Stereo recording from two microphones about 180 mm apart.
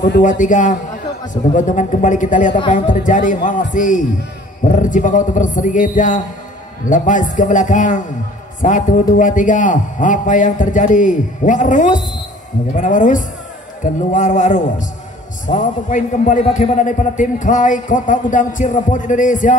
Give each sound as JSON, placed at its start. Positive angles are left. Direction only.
{"t": 0.2, "sound": "a man's voice", "side_deg": 45}
{"t": 16.3, "sound": "a man's voice", "side_deg": 35}